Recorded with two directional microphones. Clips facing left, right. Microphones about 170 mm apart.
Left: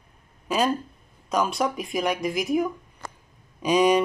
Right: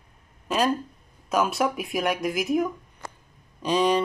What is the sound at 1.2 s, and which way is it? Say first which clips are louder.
Speech: right 1 dB; 5° right (ahead or behind).